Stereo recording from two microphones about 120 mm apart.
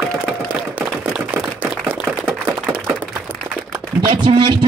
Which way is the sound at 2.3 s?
20° right (ahead or behind).